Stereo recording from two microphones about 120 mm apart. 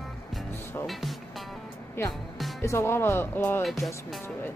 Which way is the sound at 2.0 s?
20° left (ahead or behind).